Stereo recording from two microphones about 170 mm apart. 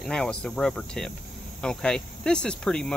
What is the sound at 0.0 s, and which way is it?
Speech, 5° left (ahead or behind).